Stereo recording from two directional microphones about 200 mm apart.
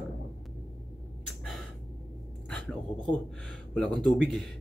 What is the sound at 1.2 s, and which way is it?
Gasp, centre (ahead or behind).